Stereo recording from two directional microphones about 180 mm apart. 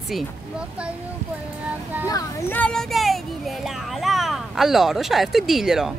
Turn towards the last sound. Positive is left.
turn(degrees=0)  # may be behind; listen again after turning